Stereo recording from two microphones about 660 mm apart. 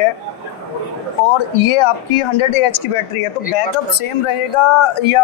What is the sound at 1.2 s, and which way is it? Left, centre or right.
A woman's voice, left.